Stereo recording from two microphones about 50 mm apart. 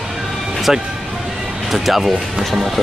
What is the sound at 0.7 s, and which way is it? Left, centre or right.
Speech, centre.